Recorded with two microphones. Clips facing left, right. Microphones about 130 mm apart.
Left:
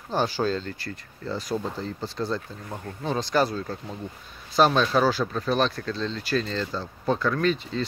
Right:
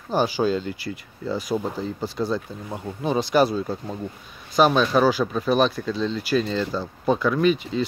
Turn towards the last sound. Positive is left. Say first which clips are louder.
# right 4 dB
turn(degrees=-10)  # may be behind; listen again after turning